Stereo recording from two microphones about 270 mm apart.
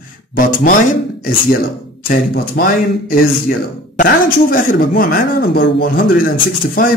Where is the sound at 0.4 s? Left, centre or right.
Left.